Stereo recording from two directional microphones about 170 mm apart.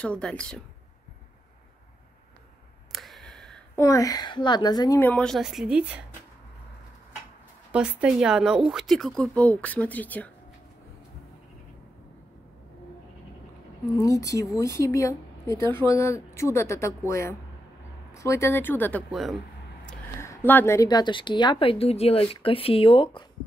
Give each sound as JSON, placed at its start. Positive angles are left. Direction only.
{"t": 0.0, "sound": "speech", "side_deg": 5}
{"t": 2.9, "sound": "a sound", "side_deg": 0}
{"t": 3.7, "sound": "a woman's voice", "side_deg": 20}
{"t": 7.7, "sound": "speech", "side_deg": -5}
{"t": 13.9, "sound": "a woman's voice", "side_deg": 20}
{"t": 19.0, "sound": "speech", "side_deg": 0}
{"t": 19.9, "sound": "a woman's voice", "side_deg": 10}